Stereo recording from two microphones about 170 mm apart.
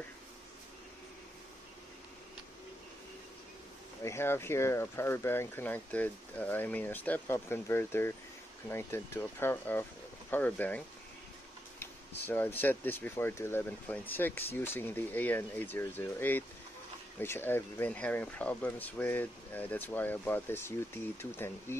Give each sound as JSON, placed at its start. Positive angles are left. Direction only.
{"t": 4.0, "sound": "speech", "side_deg": 15}
{"t": 12.3, "sound": "speech", "side_deg": 10}